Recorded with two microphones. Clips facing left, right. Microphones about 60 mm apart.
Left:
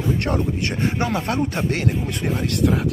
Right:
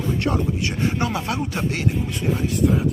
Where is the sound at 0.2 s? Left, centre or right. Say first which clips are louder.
Even; left.